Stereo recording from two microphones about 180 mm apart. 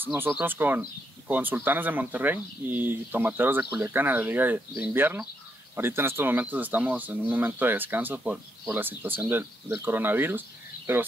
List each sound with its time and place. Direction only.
0.0 s speech: 10° right (ahead or behind)